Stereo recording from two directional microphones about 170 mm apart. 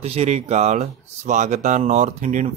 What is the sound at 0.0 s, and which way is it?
Speech, 40° right (ahead or behind).